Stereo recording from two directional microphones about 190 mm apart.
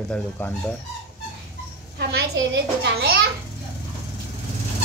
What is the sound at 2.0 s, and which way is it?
A child's voice, 65° right (ahead or behind).